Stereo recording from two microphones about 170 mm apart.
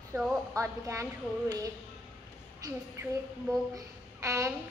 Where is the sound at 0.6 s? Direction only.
15° right (ahead or behind).